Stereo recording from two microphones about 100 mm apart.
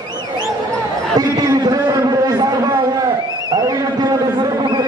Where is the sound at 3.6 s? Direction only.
40° right (ahead or behind).